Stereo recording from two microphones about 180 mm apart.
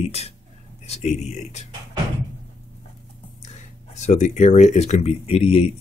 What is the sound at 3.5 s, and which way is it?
Speech, 40° left (ahead or behind).